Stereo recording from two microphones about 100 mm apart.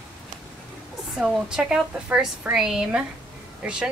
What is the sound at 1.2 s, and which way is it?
Speech, 5° right (ahead or behind).